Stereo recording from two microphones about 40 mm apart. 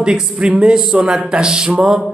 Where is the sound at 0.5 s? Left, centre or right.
Centre.